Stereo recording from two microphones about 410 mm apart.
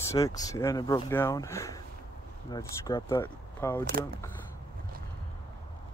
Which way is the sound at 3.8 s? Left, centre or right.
Right.